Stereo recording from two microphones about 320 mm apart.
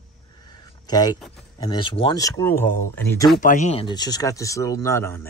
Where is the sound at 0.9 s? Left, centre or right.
Centre.